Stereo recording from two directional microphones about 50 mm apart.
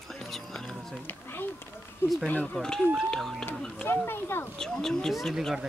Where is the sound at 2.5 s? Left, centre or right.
Centre.